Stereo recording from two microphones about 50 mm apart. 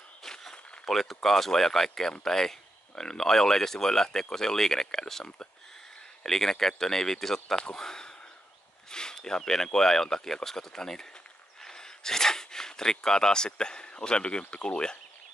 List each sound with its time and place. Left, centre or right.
0.2 s speech: centre